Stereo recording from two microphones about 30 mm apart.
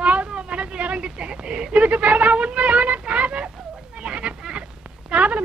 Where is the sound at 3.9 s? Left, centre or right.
Right.